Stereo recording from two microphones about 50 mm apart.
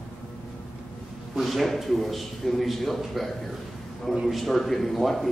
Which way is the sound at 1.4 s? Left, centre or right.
Centre.